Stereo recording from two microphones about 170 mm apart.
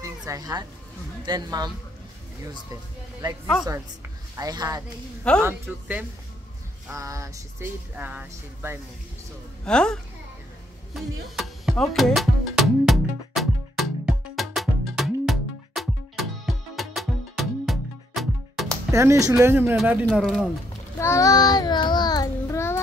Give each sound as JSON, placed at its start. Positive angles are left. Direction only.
{"t": 0.0, "sound": "music", "side_deg": -20}
{"t": 1.2, "sound": "a sound", "side_deg": -25}
{"t": 2.7, "sound": "speech", "side_deg": -20}
{"t": 4.4, "sound": "a sound", "side_deg": -20}
{"t": 5.4, "sound": "speech", "side_deg": -10}
{"t": 6.9, "sound": "a sound", "side_deg": -20}
{"t": 7.9, "sound": "speech", "side_deg": -10}
{"t": 9.7, "sound": "speech", "side_deg": 5}
{"t": 11.3, "sound": "music", "side_deg": 0}
{"t": 18.9, "sound": "speech", "side_deg": -15}
{"t": 20.1, "sound": "speech", "side_deg": 0}
{"t": 21.0, "sound": "child singing", "side_deg": 15}